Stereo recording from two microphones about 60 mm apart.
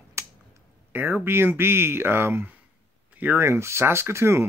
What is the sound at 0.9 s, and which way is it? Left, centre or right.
Speech, right.